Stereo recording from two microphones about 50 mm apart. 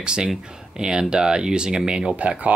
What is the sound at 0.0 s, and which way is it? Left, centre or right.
Speech, centre.